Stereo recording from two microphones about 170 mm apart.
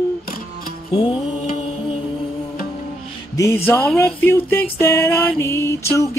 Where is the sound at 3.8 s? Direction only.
10° left (ahead or behind).